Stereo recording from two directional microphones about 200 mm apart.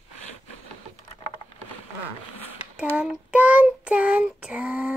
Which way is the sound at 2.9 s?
5° right (ahead or behind).